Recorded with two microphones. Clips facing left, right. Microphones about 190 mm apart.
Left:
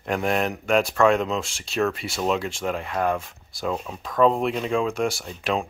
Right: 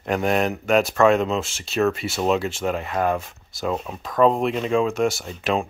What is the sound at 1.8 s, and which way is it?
Speech, 20° right (ahead or behind).